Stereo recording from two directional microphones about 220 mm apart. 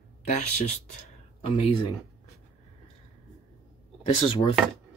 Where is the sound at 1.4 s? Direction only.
25° left (ahead or behind).